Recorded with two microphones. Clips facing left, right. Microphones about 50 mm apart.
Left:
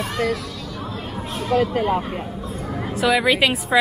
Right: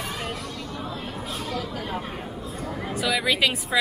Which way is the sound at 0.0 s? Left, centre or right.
Left.